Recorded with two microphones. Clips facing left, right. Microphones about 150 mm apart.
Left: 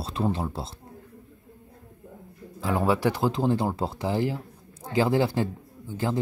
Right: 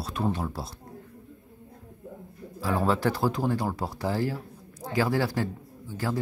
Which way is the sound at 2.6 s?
20° left (ahead or behind).